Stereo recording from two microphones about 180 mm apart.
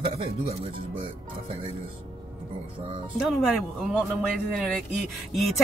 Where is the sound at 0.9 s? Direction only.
30° right (ahead or behind).